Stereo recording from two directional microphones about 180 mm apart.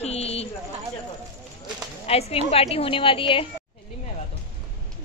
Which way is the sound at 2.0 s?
35° left (ahead or behind).